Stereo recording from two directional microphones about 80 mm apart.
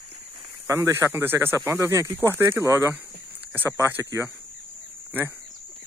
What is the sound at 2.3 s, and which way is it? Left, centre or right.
Speech, right.